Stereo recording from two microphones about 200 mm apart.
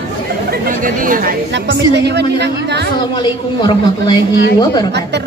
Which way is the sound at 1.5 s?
60° right (ahead or behind).